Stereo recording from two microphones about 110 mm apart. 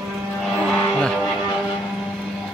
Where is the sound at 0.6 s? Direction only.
5° left (ahead or behind).